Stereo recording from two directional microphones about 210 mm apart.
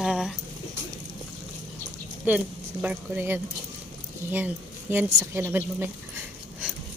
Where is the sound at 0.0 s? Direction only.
Centre (ahead or behind).